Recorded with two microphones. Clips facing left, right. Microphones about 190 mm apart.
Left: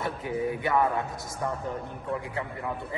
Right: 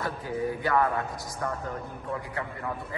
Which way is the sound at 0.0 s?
20° left (ahead or behind).